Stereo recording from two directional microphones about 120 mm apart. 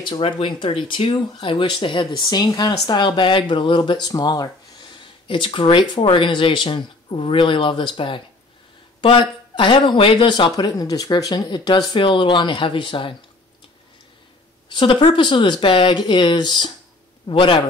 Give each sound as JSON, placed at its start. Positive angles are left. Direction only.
{"t": 0.0, "sound": "speech", "side_deg": 50}
{"t": 14.7, "sound": "speech", "side_deg": 40}